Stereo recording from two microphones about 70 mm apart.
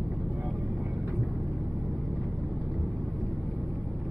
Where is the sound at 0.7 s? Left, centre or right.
Right.